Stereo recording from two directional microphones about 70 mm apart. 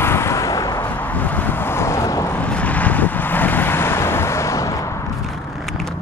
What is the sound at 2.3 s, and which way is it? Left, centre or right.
Vehicle, left.